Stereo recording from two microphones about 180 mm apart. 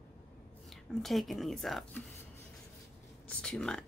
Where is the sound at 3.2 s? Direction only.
5° left (ahead or behind).